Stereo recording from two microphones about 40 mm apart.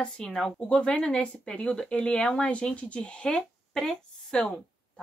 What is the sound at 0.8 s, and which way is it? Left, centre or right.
A woman's voice, left.